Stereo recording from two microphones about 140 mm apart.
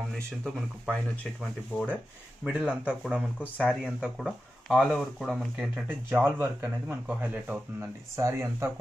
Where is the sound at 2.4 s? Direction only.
10° right (ahead or behind).